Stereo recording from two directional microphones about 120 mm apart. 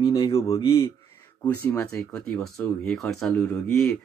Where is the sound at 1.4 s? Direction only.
15° left (ahead or behind).